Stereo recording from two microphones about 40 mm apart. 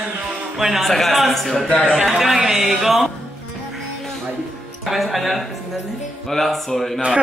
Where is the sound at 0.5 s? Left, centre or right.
Centre.